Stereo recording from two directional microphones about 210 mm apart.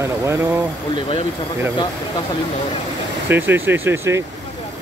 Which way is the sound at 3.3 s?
10° right (ahead or behind).